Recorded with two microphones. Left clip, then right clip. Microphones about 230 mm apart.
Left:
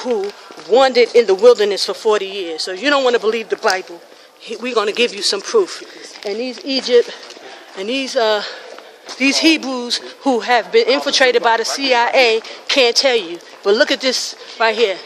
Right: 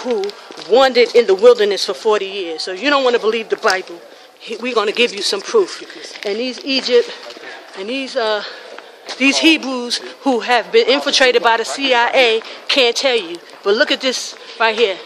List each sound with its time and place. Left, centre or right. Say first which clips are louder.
0.7 s speech: even; centre
6.6 s speech: left 1 dB; centre
7.8 s speech: left 3 dB; left
9.2 s speech: right 1 dB; centre